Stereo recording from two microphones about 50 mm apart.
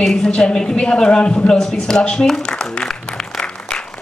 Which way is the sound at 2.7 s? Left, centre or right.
Centre.